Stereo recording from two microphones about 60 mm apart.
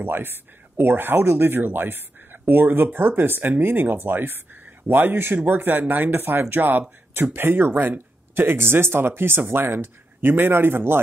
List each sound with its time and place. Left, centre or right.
0.0 s speech: right